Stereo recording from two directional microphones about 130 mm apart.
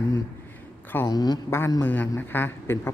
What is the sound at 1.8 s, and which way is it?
Speech, 15° left (ahead or behind).